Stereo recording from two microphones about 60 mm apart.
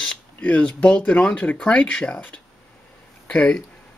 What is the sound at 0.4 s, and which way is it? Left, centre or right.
Speech, left.